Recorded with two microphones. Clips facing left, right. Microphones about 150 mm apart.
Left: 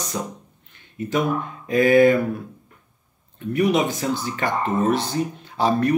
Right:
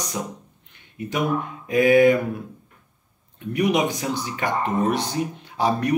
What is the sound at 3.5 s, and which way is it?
Speech, 15° right (ahead or behind).